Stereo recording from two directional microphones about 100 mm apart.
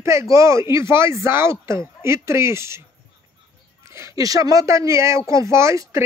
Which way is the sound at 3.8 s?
30° right (ahead or behind).